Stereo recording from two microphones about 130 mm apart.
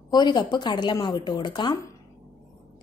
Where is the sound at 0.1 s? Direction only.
35° left (ahead or behind).